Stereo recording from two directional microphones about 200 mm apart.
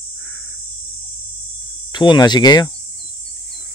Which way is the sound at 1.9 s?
25° left (ahead or behind).